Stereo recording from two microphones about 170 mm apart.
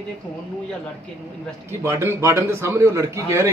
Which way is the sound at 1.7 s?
15° right (ahead or behind).